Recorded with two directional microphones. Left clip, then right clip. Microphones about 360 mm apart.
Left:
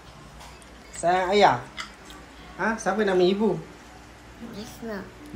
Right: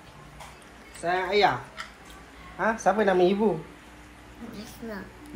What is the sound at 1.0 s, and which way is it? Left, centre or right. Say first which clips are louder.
Speech: left 4 dB; centre.